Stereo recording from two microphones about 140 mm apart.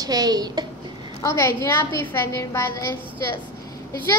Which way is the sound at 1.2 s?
20° left (ahead or behind).